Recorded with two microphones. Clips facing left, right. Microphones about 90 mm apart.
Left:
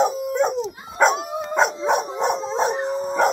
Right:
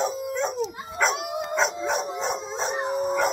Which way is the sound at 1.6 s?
60° left (ahead or behind).